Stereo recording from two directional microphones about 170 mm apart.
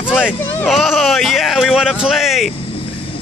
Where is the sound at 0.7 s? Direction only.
Centre (ahead or behind).